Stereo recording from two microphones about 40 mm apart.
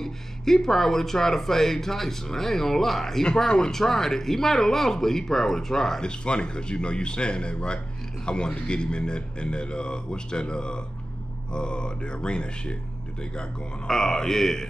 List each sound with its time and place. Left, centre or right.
0.0 s speech: centre
6.0 s a man's voice: left
13.8 s speech: centre